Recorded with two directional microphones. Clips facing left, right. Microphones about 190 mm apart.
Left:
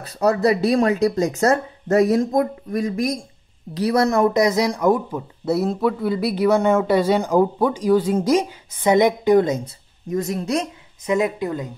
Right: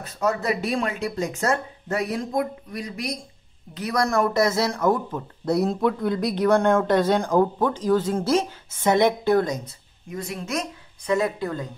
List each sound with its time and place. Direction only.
0.0 s speech: 35° left (ahead or behind)
3.7 s speech: 30° left (ahead or behind)
10.0 s speech: 40° left (ahead or behind)
11.1 s speech: 20° left (ahead or behind)